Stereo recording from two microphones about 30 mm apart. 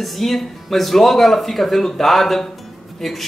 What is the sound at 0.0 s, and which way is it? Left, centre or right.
Speech, centre.